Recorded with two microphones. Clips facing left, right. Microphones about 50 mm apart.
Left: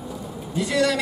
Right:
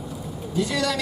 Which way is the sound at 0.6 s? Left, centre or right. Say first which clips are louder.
Left 6 dB; centre.